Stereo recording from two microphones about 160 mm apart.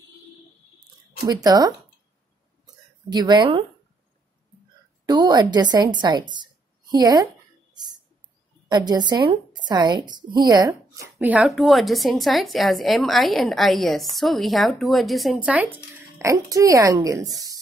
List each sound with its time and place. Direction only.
1.2 s a woman's voice: 25° right (ahead or behind)
2.6 s a sound: 25° right (ahead or behind)
5.0 s speech: 25° right (ahead or behind)
8.6 s a woman's voice: 25° right (ahead or behind)